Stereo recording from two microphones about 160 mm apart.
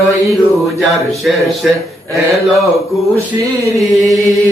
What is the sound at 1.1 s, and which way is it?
Speech, centre (ahead or behind).